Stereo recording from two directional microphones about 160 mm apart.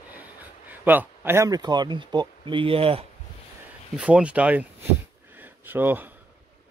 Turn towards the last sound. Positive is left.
turn(degrees=-10)  # may be behind; listen again after turning